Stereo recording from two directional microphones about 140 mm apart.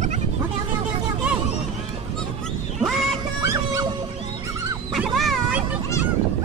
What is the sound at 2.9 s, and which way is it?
Music, centre (ahead or behind).